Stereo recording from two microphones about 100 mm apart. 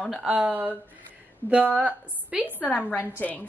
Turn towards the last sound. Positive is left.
turn(degrees=15)  # may be behind; listen again after turning